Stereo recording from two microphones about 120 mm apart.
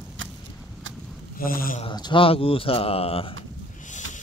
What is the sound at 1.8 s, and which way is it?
A man's voice, 40° left (ahead or behind).